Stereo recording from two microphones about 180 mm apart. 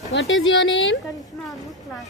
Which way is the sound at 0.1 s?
85° left.